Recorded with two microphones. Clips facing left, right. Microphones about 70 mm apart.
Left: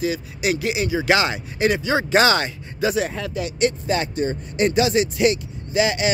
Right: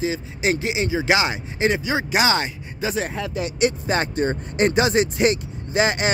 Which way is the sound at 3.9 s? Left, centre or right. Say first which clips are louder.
Right 1 dB; right.